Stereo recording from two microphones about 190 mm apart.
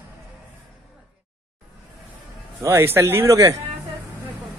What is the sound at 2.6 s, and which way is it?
Speech, 15° right (ahead or behind).